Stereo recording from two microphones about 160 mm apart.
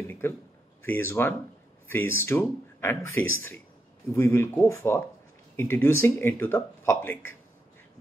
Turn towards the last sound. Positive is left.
turn(degrees=10)  # may be behind; listen again after turning